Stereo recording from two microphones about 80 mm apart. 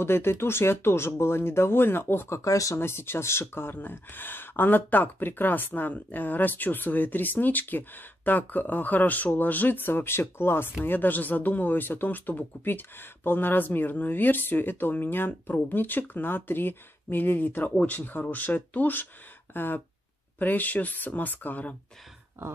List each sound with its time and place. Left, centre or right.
0.0 s speech: left
2.8 s speech: left